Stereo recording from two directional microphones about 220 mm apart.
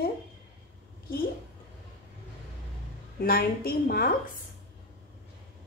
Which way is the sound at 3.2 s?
45° left (ahead or behind).